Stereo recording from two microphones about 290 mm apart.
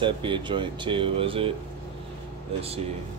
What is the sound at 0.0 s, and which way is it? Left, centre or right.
Speech, centre.